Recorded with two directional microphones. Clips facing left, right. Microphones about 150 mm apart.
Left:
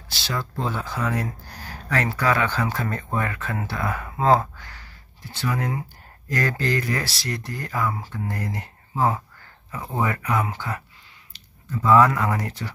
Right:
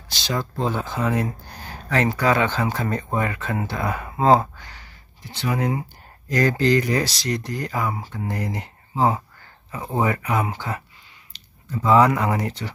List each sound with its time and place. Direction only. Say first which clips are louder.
0.1 s speech: right 3 dB; 20° right (ahead or behind)